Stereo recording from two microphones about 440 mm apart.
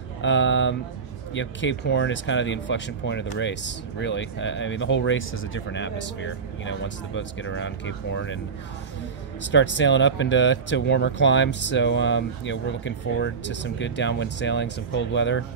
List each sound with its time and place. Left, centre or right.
0.2 s speech: left
9.4 s speech: left